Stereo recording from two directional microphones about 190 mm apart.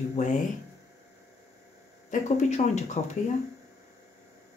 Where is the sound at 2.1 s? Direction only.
35° left (ahead or behind).